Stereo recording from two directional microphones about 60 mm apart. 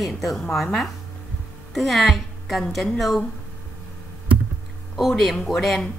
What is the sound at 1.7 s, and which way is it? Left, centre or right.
A woman's voice, centre.